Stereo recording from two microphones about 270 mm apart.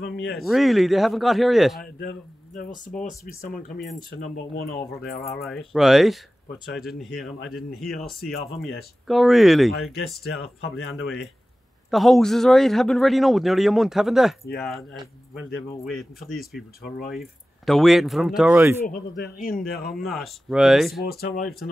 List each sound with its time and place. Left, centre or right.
0.0 s speech: centre
3.3 s speech: left
5.3 s speech: centre
11.9 s speech: centre
18.9 s speech: left
19.9 s speech: centre
21.0 s speech: left